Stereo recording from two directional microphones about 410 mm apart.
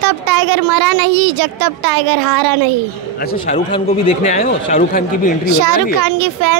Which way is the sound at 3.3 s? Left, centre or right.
Centre.